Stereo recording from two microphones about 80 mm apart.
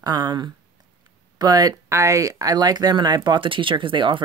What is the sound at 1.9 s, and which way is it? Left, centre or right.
Speech, right.